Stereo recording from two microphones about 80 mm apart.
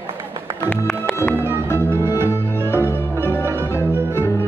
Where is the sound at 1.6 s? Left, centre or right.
Left.